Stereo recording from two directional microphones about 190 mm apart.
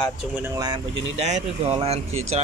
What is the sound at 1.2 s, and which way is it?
Speech, 35° right (ahead or behind).